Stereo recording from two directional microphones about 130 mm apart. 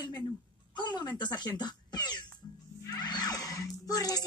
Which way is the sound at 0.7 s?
35° left (ahead or behind).